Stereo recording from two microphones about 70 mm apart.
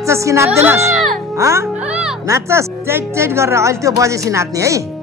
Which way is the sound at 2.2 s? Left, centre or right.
Right.